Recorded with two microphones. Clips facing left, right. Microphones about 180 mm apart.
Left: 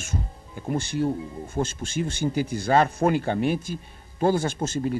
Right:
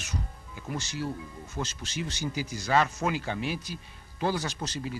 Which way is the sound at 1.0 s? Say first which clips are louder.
Left 8 dB; 25° left (ahead or behind).